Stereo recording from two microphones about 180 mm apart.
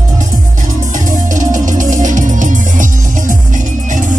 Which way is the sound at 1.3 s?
45° right (ahead or behind).